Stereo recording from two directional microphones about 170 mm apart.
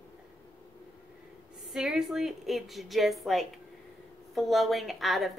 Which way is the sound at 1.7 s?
Centre (ahead or behind).